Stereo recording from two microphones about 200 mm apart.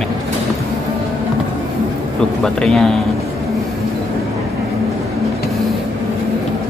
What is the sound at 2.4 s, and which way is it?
Speech, centre (ahead or behind).